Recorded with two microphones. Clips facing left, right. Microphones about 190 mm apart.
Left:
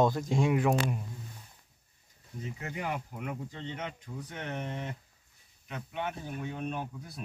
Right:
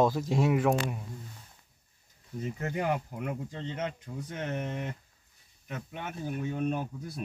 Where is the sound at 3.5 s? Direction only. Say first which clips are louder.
Right 4 dB; 40° right (ahead or behind).